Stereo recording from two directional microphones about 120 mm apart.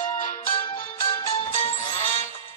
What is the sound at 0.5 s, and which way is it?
Music, 45° left (ahead or behind).